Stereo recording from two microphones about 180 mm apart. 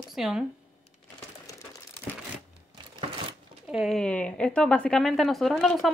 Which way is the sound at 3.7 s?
Centre (ahead or behind).